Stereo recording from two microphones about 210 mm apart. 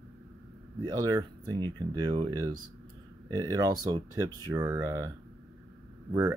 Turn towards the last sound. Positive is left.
turn(degrees=-10)  # may be behind; listen again after turning